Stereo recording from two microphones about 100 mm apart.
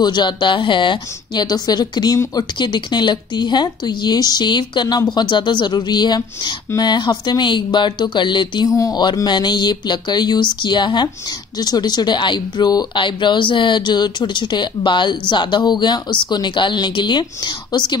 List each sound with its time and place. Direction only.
0.0 s speech: 50° left (ahead or behind)